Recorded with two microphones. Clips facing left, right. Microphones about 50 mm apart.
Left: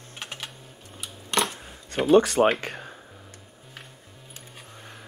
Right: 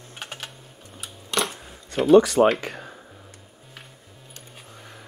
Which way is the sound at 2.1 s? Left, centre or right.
Left.